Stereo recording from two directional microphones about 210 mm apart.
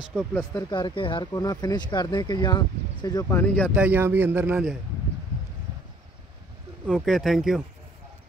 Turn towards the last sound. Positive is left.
turn(degrees=0)  # may be behind; listen again after turning